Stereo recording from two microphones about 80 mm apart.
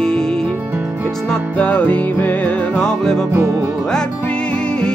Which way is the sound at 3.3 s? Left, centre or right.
Right.